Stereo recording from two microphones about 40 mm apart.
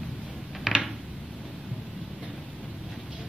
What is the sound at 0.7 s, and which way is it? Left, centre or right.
Mechanisms, centre.